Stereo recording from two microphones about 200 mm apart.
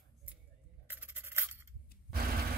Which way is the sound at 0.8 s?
10° right (ahead or behind).